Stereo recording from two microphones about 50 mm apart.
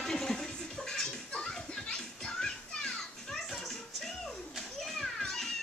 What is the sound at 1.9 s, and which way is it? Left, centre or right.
Children playing, centre.